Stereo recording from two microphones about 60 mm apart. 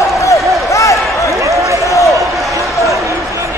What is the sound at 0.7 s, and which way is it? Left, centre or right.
Basketball bounce, left.